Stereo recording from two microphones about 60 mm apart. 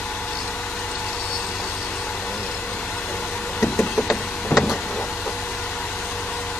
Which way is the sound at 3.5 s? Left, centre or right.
Centre.